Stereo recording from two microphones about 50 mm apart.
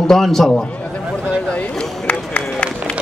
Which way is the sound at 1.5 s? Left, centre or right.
Left.